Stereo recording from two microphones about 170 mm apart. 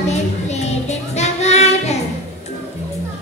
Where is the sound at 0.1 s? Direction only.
40° left (ahead or behind).